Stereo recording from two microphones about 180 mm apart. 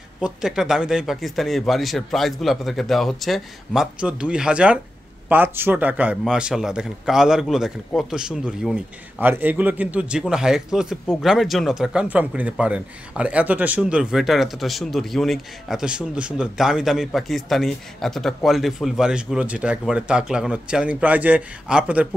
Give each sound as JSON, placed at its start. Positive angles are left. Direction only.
{"t": 0.2, "sound": "a man's voice", "side_deg": -5}